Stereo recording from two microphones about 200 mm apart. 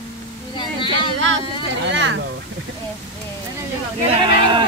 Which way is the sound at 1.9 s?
65° right (ahead or behind).